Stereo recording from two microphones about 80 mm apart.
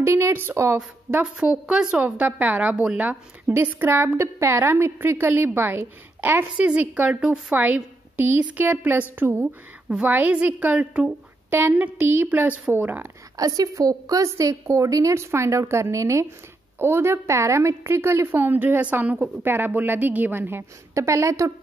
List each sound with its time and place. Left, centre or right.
0.0 s a woman's voice: right
1.2 s a woman's voice: centre
9.8 s a woman's voice: centre
13.4 s a woman's voice: right
14.3 s a woman's voice: right